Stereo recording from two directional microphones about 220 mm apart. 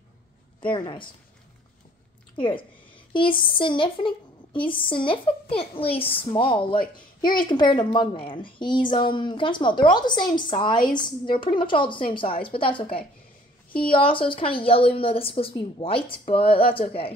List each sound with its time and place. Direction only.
0.7 s a woman's voice: 20° left (ahead or behind)
2.3 s a woman's voice: 20° left (ahead or behind)